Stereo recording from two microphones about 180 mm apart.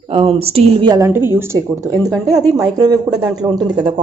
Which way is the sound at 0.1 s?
30° right (ahead or behind).